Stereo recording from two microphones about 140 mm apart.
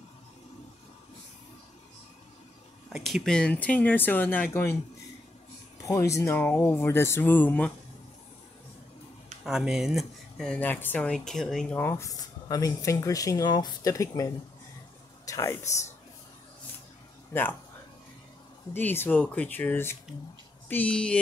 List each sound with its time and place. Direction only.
2.9 s speech: centre (ahead or behind); by 4.7 s 15° left (ahead or behind)
5.8 s speech: 20° left (ahead or behind)
9.4 s speech: 5° right (ahead or behind)
11.8 s speech: 20° left (ahead or behind)
15.6 s speech: 55° left (ahead or behind)
17.3 s speech: 15° left (ahead or behind)
18.7 s speech: 15° left (ahead or behind)